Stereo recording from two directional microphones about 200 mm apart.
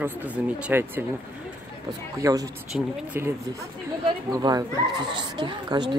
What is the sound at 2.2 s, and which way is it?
Speech, 15° right (ahead or behind).